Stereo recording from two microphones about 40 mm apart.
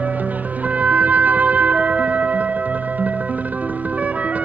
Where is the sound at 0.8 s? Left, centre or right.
Right.